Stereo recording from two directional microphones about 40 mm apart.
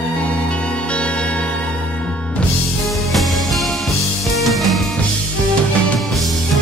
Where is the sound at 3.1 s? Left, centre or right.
Centre.